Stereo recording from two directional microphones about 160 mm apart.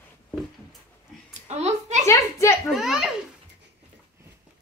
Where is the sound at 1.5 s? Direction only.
45° right (ahead or behind).